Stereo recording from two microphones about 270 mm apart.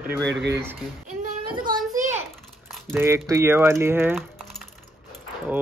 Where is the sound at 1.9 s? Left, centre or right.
Centre.